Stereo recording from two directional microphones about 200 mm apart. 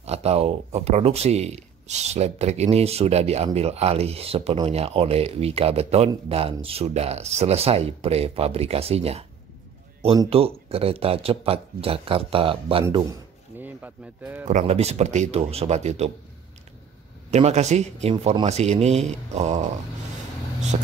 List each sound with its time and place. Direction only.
0.0 s speech: 30° right (ahead or behind)
13.6 s speech: 10° right (ahead or behind)
14.5 s speech: 35° right (ahead or behind)
17.3 s speech: 35° right (ahead or behind)